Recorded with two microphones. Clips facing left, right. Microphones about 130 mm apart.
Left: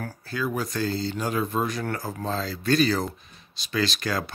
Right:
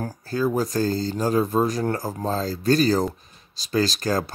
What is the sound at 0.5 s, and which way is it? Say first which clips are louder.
Speech: right 5 dB; 40° right (ahead or behind).